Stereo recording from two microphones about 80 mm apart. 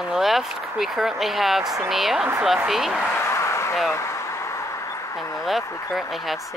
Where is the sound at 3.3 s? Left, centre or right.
Left.